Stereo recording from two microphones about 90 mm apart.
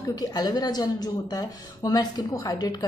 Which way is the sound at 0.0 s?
45° left (ahead or behind).